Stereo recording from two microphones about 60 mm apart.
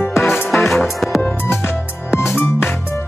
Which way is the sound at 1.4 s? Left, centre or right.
Left.